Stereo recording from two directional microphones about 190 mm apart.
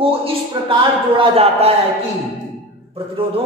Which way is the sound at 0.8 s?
30° right (ahead or behind).